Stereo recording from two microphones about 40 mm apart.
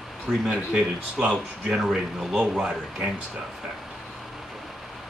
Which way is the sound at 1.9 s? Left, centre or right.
Centre.